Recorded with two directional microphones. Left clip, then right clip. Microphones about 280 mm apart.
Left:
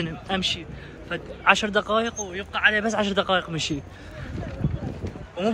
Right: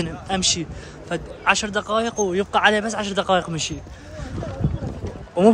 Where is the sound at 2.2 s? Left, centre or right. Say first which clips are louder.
Right 5 dB; right.